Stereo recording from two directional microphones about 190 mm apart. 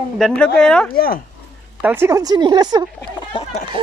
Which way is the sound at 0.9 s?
50° left (ahead or behind).